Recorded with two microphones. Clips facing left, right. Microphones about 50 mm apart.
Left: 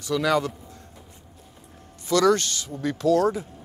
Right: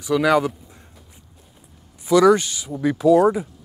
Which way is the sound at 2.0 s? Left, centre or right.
Centre.